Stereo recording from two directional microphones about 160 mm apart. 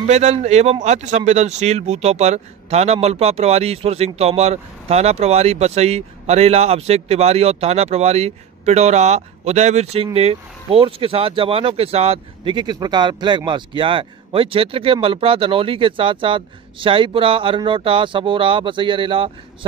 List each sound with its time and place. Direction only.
0.0 s a man's voice: 45° right (ahead or behind)